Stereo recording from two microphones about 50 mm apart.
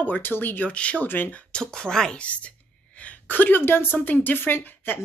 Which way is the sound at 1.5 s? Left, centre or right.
Centre.